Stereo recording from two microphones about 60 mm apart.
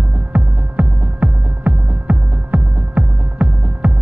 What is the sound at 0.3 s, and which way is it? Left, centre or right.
Music, right.